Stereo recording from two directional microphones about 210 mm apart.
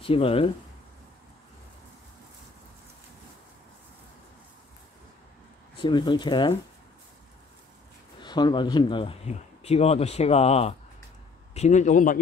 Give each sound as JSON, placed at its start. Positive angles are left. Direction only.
{"t": 0.0, "sound": "speech", "side_deg": 25}
{"t": 5.8, "sound": "speech", "side_deg": 20}
{"t": 8.2, "sound": "a man's voice", "side_deg": 20}